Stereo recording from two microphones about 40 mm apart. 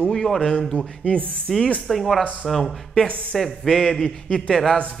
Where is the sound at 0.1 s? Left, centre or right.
Centre.